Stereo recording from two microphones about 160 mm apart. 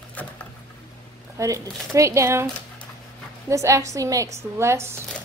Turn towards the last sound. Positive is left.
turn(degrees=-15)  # may be behind; listen again after turning